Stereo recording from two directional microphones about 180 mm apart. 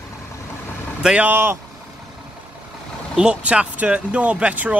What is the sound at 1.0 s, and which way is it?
Speech, 10° right (ahead or behind).